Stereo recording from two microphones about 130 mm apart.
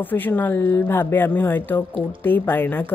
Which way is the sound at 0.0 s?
15° left (ahead or behind).